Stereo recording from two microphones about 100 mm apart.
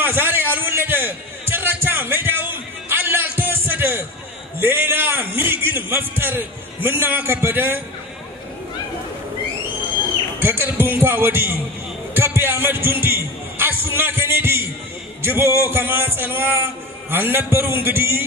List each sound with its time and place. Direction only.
0.0 s music: 20° right (ahead or behind)
4.6 s a man's voice: 20° right (ahead or behind)
10.4 s a man's voice: 20° right (ahead or behind)